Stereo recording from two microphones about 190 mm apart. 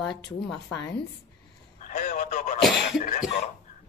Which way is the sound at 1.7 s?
45° left (ahead or behind).